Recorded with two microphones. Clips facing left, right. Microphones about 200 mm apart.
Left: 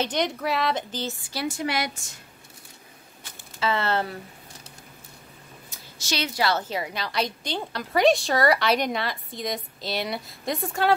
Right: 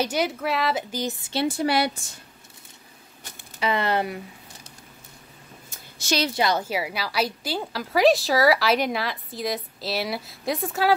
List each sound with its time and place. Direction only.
0.0 s a woman's voice: 5° right (ahead or behind)
1.2 s a woman's voice: 25° right (ahead or behind)
3.5 s speech: 15° right (ahead or behind)
5.7 s a sound: 50° right (ahead or behind)
6.3 s a woman's voice: 15° right (ahead or behind)